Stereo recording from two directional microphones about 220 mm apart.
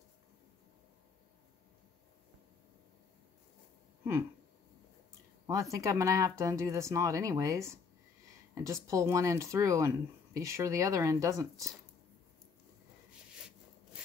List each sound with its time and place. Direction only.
5.5 s speech: 15° right (ahead or behind)